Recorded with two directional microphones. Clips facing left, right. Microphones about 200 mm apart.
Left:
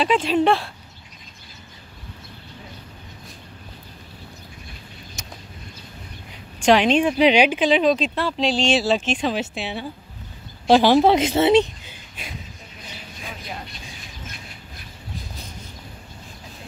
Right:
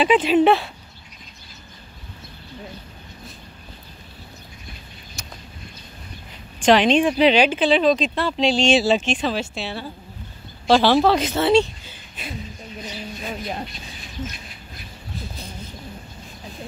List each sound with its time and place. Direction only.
0.0 s speech: 5° right (ahead or behind)
5.2 s vehicle: 20° left (ahead or behind)
6.6 s speech: 10° left (ahead or behind)
9.1 s speech: 15° left (ahead or behind)